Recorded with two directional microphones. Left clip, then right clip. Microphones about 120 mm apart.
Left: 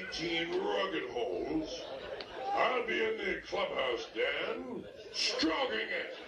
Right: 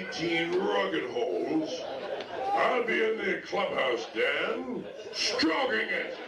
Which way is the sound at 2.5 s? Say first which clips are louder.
Right 5 dB; 55° right (ahead or behind).